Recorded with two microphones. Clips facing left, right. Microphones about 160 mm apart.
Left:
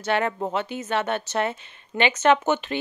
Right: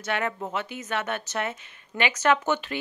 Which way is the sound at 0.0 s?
30° left (ahead or behind).